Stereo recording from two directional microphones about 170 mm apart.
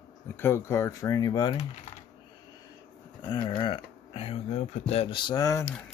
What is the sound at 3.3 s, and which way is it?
Speech, 30° left (ahead or behind).